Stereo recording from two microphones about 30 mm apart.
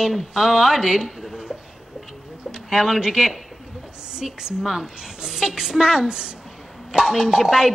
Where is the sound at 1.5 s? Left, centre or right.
Centre.